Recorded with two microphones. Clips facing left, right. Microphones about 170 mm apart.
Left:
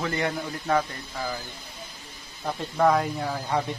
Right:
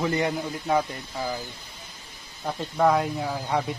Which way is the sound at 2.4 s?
5° right (ahead or behind).